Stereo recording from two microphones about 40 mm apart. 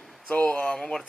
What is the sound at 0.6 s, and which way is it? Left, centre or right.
Speech, centre.